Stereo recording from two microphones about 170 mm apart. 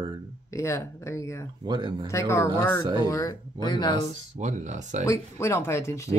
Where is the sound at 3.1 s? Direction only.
25° left (ahead or behind).